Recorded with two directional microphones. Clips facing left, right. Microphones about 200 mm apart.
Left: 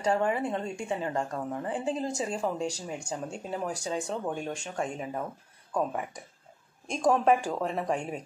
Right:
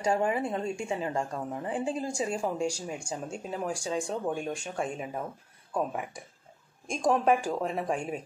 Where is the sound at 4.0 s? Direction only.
10° right (ahead or behind).